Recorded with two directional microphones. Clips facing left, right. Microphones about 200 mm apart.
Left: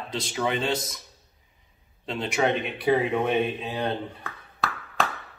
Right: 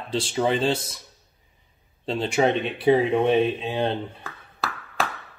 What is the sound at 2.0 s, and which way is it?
Speech, 30° right (ahead or behind).